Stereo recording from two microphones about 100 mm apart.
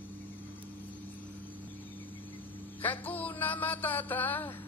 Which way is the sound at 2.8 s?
20° left (ahead or behind).